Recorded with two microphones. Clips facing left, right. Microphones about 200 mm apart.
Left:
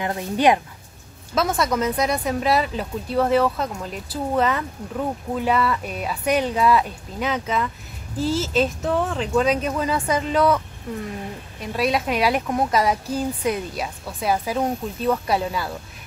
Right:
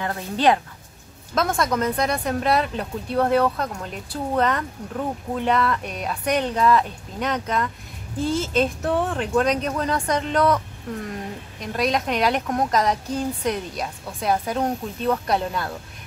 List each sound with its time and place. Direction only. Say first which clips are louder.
0.0 s speech: left 1 dB; 15° left (ahead or behind)
1.3 s speech: left 1 dB; 5° left (ahead or behind)
11.6 s speech: left 1 dB; 5° left (ahead or behind)